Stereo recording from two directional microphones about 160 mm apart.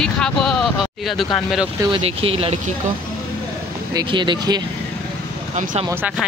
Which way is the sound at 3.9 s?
30° right (ahead or behind).